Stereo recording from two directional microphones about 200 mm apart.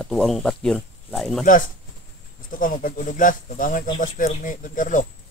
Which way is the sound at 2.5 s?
45° left (ahead or behind).